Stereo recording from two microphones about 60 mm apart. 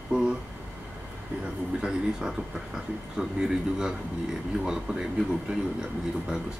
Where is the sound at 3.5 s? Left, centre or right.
Centre.